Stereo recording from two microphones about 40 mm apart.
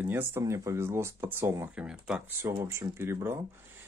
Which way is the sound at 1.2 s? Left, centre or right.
Right.